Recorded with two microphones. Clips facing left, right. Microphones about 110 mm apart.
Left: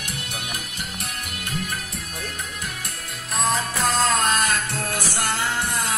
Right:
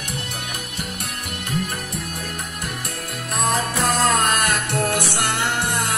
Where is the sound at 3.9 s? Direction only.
55° right (ahead or behind).